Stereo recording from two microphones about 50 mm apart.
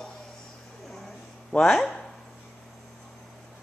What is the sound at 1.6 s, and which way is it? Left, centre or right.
Speech, centre.